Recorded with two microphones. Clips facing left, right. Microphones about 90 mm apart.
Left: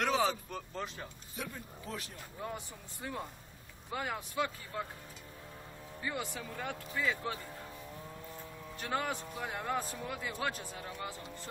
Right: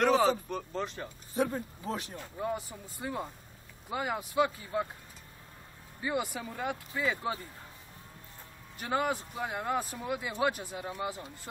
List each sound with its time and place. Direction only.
0.0 s vehicle: 5° right (ahead or behind)
0.5 s speech: centre (ahead or behind)
1.3 s speech: 35° right (ahead or behind)
2.4 s speech: 10° right (ahead or behind)
6.0 s speech: 15° right (ahead or behind)
8.7 s speech: 10° right (ahead or behind)